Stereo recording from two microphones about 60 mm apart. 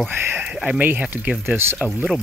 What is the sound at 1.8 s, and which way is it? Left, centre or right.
Speech, centre.